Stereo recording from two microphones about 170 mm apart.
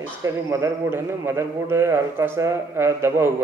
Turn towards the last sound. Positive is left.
turn(degrees=-15)  # may be behind; listen again after turning